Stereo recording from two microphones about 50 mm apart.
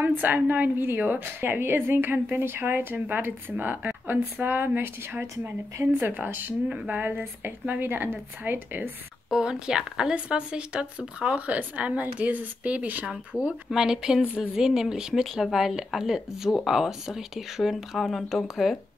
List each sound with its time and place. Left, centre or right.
0.0 s a woman's voice: right
9.3 s a woman's voice: centre; by 13.0 s right
13.3 s speech: left
13.7 s speech: centre